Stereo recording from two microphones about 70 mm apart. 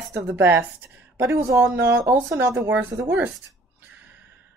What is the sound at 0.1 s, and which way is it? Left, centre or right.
Speech, right.